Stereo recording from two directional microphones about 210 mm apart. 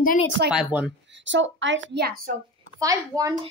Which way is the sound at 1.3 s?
60° right (ahead or behind).